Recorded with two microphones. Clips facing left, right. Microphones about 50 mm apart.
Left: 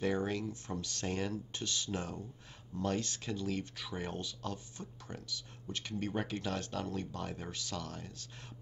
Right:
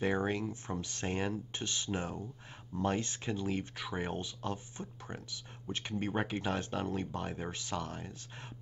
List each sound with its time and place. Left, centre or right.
0.0 s speech: right